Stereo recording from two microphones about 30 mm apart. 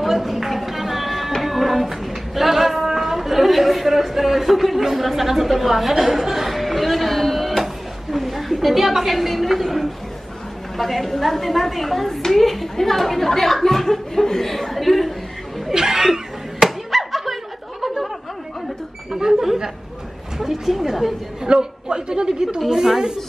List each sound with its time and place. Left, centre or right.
0.0 s a sound: centre
1.4 s music: centre
2.9 s a sound: centre
10.8 s a woman's voice: centre
14.5 s speech: centre
15.7 s slap: centre
17.8 s a sound: centre
19.4 s speech: centre
21.5 s a woman's voice: right
22.7 s speech: centre